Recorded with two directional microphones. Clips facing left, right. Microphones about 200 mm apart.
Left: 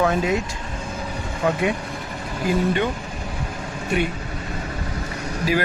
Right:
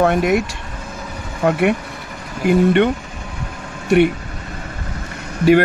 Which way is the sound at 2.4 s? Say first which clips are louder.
Right 7 dB; 65° right (ahead or behind).